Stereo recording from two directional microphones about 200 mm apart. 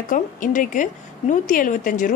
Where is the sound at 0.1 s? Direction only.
40° left (ahead or behind).